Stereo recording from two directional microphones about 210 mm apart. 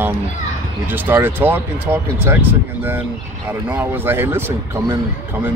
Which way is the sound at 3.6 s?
10° right (ahead or behind).